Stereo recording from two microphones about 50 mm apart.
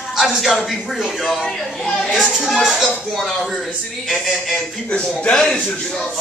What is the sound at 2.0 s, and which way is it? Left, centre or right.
A man's voice, centre.